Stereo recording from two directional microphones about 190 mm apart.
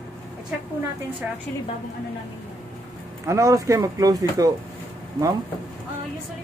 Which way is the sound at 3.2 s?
15° right (ahead or behind).